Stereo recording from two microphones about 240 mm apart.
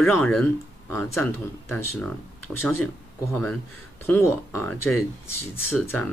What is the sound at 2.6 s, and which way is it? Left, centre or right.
Speech, centre.